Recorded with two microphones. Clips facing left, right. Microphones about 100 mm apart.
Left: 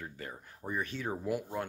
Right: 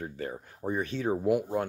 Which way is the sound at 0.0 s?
30° right (ahead or behind).